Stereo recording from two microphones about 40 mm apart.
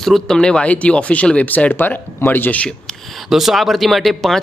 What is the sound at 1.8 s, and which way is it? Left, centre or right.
Speech, left.